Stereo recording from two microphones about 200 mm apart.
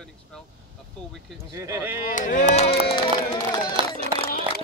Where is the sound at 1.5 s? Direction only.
15° right (ahead or behind).